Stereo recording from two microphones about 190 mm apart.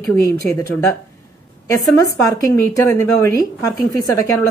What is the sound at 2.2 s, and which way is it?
A woman's voice, 15° left (ahead or behind).